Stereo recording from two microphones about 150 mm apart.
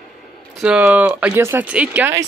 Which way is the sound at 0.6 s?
10° right (ahead or behind).